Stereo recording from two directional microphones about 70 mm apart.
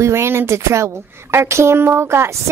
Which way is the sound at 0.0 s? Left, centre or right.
Right.